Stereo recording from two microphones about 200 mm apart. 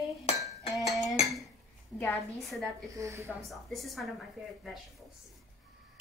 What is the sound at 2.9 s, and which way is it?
Speech, 15° right (ahead or behind).